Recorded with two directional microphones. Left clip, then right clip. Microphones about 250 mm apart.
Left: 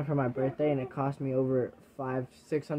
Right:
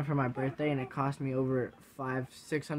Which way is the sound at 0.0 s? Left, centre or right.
Centre.